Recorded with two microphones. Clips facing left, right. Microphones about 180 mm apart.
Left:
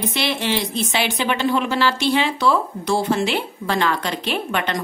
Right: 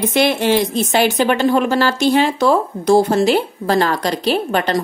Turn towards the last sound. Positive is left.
turn(degrees=-35)  # may be behind; listen again after turning